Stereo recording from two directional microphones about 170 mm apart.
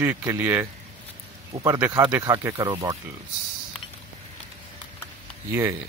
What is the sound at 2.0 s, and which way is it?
Speech, 15° right (ahead or behind).